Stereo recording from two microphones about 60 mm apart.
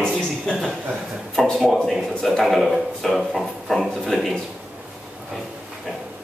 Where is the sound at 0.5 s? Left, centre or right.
Centre.